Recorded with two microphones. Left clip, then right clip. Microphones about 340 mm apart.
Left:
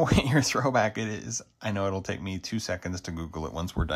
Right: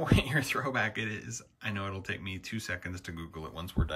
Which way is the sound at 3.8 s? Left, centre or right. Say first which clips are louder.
Left 4 dB; right.